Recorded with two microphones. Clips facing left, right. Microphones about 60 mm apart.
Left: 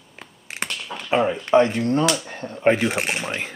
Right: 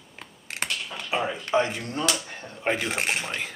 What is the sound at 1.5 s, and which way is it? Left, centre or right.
Speech, left.